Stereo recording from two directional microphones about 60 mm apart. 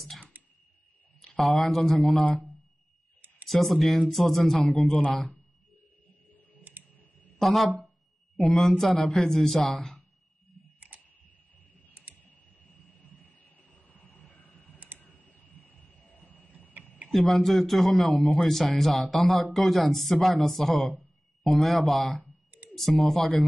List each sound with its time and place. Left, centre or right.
0.3 s a sound: right
1.2 s a man's voice: centre
3.4 s a man's voice: centre
7.3 s a man's voice: centre
11.9 s typing: right
12.9 s vehicle: left
15.0 s a sound: left
17.1 s a man's voice: centre